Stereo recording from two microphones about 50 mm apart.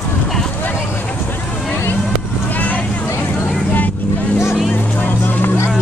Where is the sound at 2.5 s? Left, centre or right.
Left.